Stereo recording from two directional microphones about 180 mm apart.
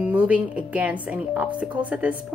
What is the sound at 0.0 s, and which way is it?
A woman's voice, 10° right (ahead or behind).